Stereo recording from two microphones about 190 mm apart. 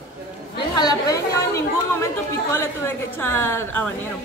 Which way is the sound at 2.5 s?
10° left (ahead or behind).